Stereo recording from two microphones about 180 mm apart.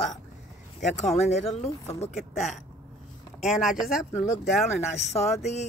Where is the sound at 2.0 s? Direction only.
40° left (ahead or behind).